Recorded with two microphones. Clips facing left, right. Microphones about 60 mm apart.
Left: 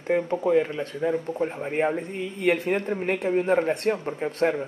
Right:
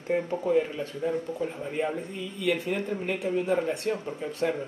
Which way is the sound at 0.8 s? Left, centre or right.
Left.